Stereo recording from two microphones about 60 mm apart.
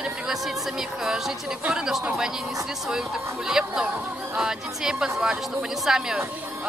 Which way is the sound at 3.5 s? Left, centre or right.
Centre.